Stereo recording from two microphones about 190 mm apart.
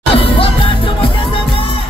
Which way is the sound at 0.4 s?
30° left (ahead or behind).